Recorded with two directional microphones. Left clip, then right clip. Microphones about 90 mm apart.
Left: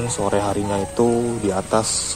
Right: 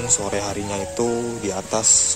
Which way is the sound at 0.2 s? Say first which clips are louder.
Left 5 dB; centre (ahead or behind).